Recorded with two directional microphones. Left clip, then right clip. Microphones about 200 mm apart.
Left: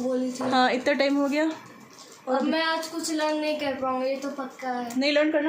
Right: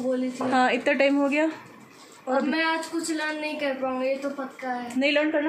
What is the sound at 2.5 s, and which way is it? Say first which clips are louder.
A woman's voice: even; 25° left (ahead or behind).